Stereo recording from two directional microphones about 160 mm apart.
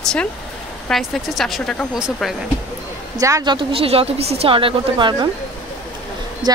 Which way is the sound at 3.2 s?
20° right (ahead or behind).